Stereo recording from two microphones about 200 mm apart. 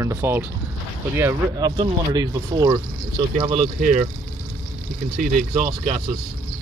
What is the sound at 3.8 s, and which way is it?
Speech, 40° right (ahead or behind).